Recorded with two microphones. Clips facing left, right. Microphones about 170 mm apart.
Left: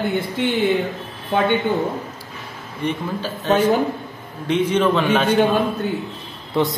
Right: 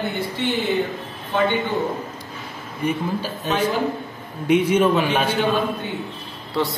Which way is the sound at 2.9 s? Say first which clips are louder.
Right 1 dB; 10° right (ahead or behind).